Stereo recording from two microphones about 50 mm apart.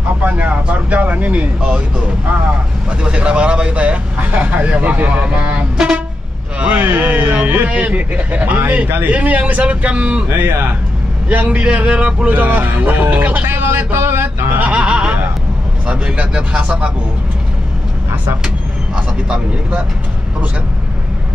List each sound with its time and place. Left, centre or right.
0.2 s vehicle: right
3.0 s speech: right
6.6 s speech: right
11.4 s speech: right
12.3 s a sound: right
14.6 s a sound: right
15.9 s speech: right
18.9 s speech: right